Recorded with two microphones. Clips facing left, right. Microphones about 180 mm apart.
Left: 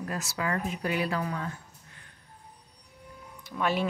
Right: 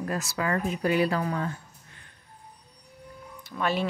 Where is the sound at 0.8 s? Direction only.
35° right (ahead or behind).